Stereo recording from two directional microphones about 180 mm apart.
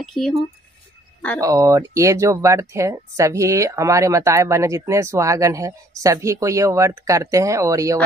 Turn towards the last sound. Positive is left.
turn(degrees=-15)  # may be behind; listen again after turning